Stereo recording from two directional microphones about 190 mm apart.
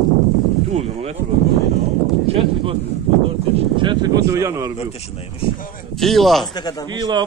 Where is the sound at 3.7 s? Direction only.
25° right (ahead or behind).